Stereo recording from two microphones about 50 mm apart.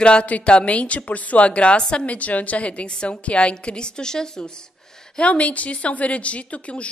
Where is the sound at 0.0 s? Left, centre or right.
Left.